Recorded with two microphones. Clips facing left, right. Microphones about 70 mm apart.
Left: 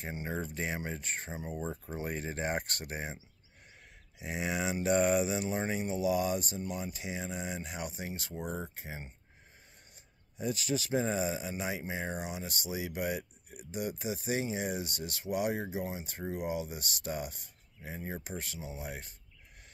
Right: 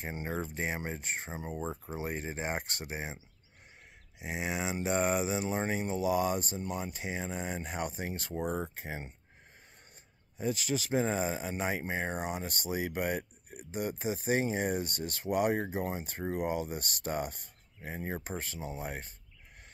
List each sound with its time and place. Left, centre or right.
0.0 s speech: right
4.2 s speech: right
10.3 s speech: right